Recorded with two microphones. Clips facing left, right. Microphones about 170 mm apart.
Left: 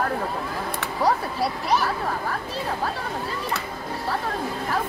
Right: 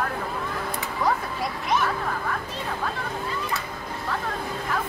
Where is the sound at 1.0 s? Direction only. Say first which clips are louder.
Left 3 dB; 35° left (ahead or behind).